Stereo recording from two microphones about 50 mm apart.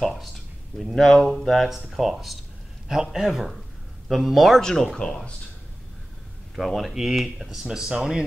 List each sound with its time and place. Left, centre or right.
0.0 s speech: centre
4.6 s speech: centre
6.9 s speech: centre